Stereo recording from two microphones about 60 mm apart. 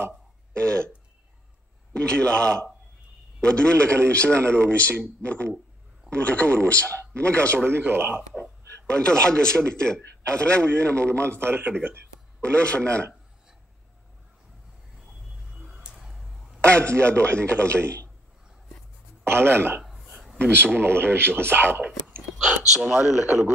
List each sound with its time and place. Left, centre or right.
0.5 s throat clearing: centre
2.0 s a man's voice: centre
7.6 s speech: right
8.8 s a man's voice: centre
11.0 s speech: right
12.4 s speech: centre
15.8 s a sound: centre
16.6 s a man's voice: centre
19.2 s speech: right
22.8 s speech: centre